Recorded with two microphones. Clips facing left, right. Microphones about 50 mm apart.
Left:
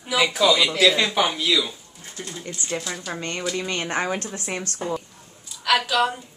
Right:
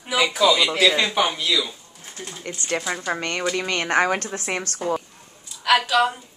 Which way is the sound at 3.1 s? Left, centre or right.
Right.